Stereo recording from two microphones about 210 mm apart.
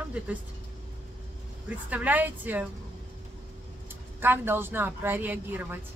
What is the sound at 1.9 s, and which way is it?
Speech, 10° right (ahead or behind).